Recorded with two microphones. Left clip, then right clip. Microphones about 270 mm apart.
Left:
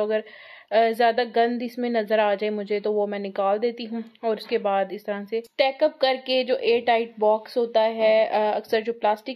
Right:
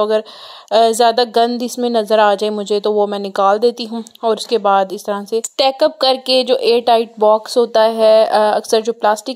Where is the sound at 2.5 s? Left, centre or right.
Right.